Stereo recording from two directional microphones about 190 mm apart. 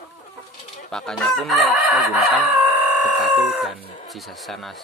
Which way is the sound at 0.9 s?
Centre (ahead or behind).